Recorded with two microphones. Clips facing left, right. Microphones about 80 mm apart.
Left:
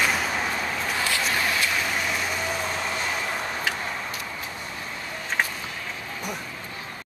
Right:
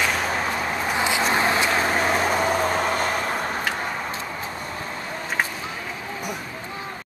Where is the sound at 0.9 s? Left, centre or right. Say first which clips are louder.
Right 5 dB; right.